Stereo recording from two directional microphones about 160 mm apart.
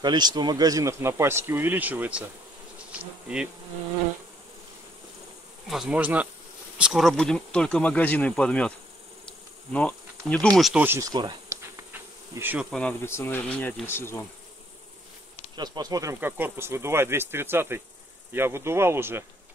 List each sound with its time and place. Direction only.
0.0 s speech: 25° right (ahead or behind); by 2.2 s 10° right (ahead or behind)
2.8 s bee: 5° right (ahead or behind)
5.7 s speech: 5° right (ahead or behind)
9.7 s bee: 5° left (ahead or behind)
10.6 s bee: 10° right (ahead or behind)
12.7 s speech: 10° left (ahead or behind)
15.5 s speech: 25° right (ahead or behind)